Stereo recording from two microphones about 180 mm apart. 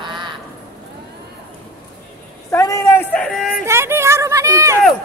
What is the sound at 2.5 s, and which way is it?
Speech, 15° left (ahead or behind).